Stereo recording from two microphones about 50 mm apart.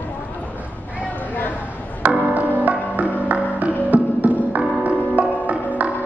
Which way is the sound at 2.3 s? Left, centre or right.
Right.